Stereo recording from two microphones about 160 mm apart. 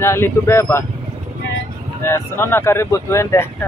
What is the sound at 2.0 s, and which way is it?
Speech, 15° left (ahead or behind).